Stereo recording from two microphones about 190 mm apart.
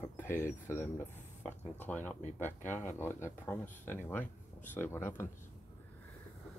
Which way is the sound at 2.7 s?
40° left (ahead or behind).